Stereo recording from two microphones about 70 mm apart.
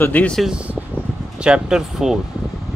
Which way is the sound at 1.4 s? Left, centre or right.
Centre.